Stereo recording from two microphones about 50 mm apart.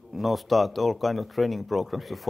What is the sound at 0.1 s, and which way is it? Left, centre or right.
Speech, centre.